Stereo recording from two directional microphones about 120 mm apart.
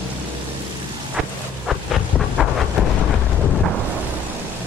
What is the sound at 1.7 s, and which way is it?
Vehicle, centre (ahead or behind).